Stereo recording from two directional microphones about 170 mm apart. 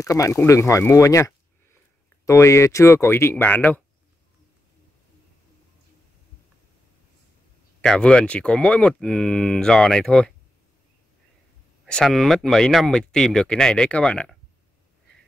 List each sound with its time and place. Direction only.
0.0 s speech: 20° left (ahead or behind)
7.8 s speech: 5° left (ahead or behind)
11.8 s speech: centre (ahead or behind)